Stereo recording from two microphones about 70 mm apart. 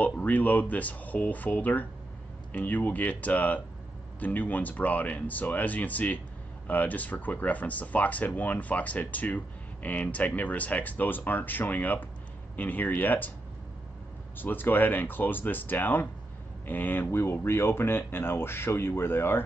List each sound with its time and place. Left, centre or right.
0.2 s speech: left
14.3 s speech: left